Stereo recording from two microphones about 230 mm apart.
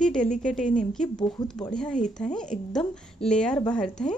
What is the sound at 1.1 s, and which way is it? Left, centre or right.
Speech, centre.